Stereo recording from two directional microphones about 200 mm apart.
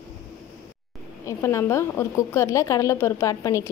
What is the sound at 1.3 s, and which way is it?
A woman's voice, 15° left (ahead or behind).